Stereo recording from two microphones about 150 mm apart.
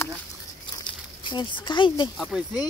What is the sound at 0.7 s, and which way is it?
Crumpling, 30° left (ahead or behind).